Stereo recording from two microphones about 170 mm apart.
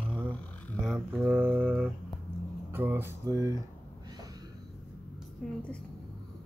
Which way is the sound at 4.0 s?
20° right (ahead or behind).